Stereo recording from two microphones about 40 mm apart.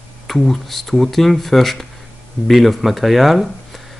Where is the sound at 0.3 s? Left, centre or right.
Centre.